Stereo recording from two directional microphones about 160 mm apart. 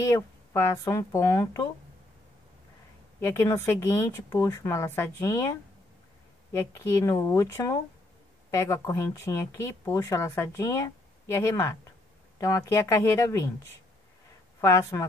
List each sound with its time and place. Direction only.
0.0 s speech: 20° left (ahead or behind)
3.3 s speech: 15° left (ahead or behind)
14.6 s speech: 20° left (ahead or behind)